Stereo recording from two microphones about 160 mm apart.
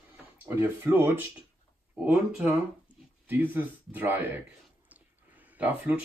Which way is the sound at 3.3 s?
10° right (ahead or behind).